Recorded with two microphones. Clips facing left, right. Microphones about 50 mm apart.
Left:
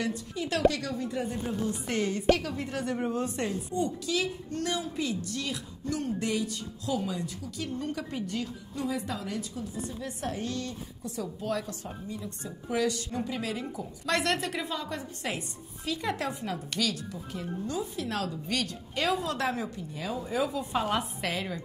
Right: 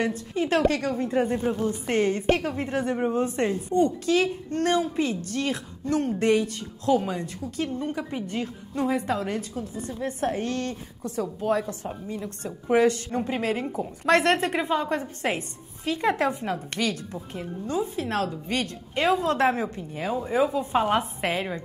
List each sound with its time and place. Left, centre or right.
0.0 s a woman's voice: right
7.8 s a woman's voice: right
8.4 s a woman's voice: right
11.2 s a woman's voice: right
12.2 s a woman's voice: right